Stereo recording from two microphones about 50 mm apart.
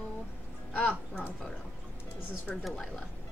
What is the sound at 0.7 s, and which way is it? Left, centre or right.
Speech, left.